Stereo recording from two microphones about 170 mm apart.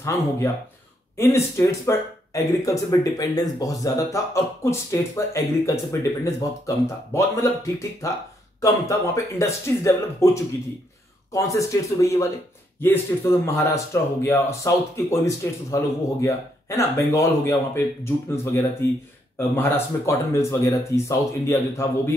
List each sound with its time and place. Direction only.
1.1 s speech: 15° left (ahead or behind)